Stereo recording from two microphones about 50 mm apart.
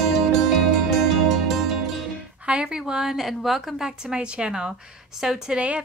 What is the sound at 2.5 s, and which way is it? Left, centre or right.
Speech, centre.